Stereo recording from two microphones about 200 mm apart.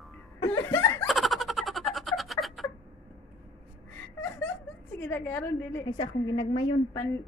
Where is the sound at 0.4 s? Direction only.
20° left (ahead or behind).